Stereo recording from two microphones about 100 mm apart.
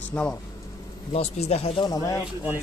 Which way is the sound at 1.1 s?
90° left.